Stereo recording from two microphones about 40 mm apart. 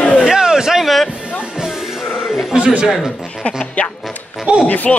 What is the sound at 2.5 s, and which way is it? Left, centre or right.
Speech, right.